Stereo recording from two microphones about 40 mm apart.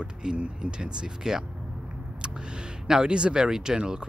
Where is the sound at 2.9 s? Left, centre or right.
Right.